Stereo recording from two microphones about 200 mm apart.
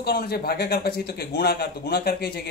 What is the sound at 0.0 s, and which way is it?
A man's voice, 50° left (ahead or behind).